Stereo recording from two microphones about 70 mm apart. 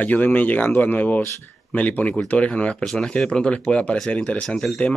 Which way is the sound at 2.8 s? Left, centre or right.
Centre.